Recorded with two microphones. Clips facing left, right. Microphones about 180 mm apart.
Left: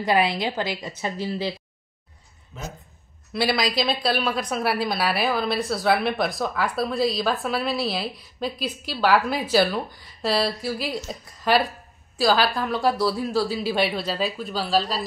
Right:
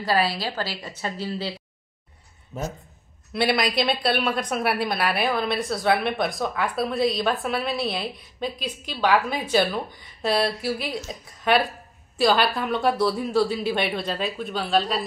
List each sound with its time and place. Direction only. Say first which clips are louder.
0.0 s a woman's voice: left 2 dB; 20° left (ahead or behind)
2.5 s speech: right 6 dB; 40° right (ahead or behind)
3.3 s a woman's voice: right 1 dB; centre (ahead or behind)